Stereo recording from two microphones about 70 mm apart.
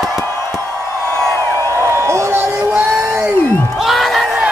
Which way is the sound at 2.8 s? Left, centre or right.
Right.